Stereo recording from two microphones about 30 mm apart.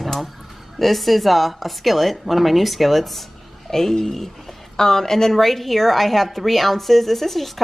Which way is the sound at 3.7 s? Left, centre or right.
Centre.